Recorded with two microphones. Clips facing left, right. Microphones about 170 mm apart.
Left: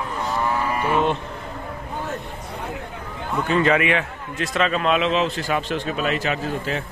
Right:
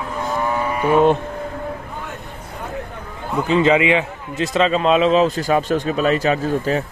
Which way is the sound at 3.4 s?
20° right (ahead or behind).